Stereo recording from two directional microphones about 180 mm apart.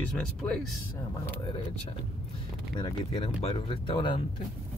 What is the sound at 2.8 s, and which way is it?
Speech, 25° left (ahead or behind).